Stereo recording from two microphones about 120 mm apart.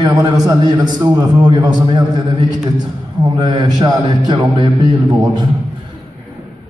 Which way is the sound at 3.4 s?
35° right (ahead or behind).